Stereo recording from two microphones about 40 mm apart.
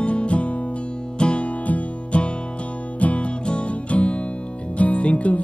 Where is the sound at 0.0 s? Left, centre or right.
Left.